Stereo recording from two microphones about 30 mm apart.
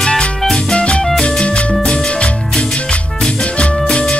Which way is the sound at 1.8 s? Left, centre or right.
Left.